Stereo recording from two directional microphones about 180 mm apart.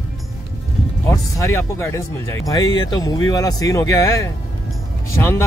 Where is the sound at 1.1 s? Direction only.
15° left (ahead or behind).